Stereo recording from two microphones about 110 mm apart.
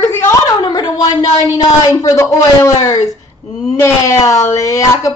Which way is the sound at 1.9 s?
30° left (ahead or behind).